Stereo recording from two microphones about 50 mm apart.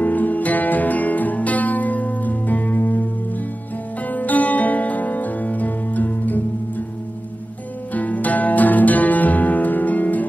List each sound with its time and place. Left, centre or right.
0.0 s music: left
7.9 s music: left